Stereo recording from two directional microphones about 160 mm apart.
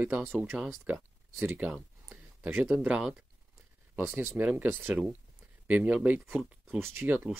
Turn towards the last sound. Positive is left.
turn(degrees=-15)  # may be behind; listen again after turning